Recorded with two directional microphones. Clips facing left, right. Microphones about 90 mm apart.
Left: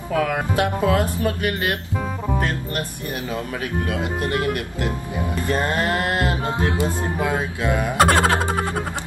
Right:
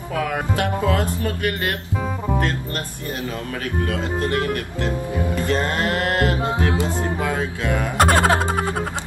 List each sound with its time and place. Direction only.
0.1 s speech: 20° left (ahead or behind)
3.8 s speech: 20° left (ahead or behind)
8.0 s music: centre (ahead or behind)